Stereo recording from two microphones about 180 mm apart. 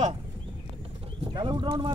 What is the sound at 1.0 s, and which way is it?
Speech, 30° right (ahead or behind).